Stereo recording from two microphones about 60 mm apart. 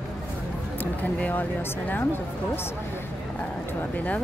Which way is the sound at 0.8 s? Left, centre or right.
Left.